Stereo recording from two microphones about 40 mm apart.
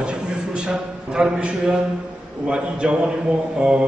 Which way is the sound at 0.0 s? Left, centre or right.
Right.